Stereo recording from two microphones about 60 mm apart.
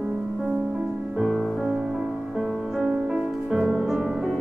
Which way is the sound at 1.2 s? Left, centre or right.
Centre.